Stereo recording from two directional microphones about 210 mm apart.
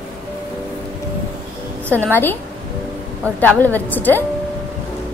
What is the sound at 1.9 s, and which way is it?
Speech, 10° left (ahead or behind).